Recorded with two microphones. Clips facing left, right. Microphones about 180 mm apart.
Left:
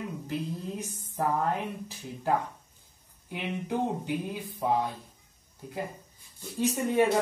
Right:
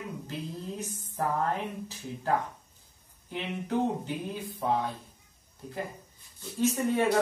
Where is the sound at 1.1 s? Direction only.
15° left (ahead or behind).